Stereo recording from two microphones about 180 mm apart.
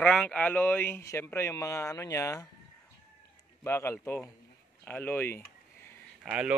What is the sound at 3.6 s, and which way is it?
Speech, 15° left (ahead or behind).